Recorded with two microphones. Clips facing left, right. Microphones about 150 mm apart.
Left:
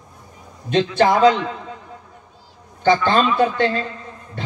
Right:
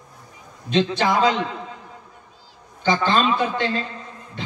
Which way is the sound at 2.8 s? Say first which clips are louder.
Left 3 dB; 50° left (ahead or behind).